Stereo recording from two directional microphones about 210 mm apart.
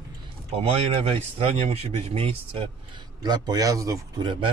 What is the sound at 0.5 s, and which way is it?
Speech, 30° right (ahead or behind).